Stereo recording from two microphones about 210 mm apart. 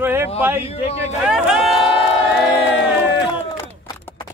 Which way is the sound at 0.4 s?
10° right (ahead or behind).